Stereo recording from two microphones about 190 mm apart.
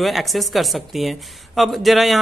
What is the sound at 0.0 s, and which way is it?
Speech, centre (ahead or behind).